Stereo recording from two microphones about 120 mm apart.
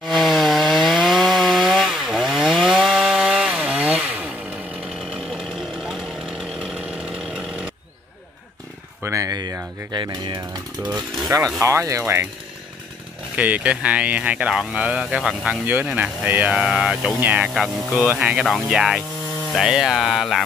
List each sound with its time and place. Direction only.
0.1 s wood: centre (ahead or behind)
5.1 s chainsaw: 5° right (ahead or behind)
9.0 s a sound: 25° right (ahead or behind)
9.9 s speech: 40° right (ahead or behind)
10.9 s speech: 5° right (ahead or behind)
11.6 s speech: 25° right (ahead or behind)
13.4 s speech: 10° right (ahead or behind)